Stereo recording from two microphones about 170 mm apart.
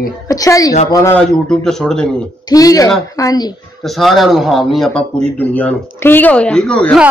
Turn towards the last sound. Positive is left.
turn(degrees=5)  # may be behind; listen again after turning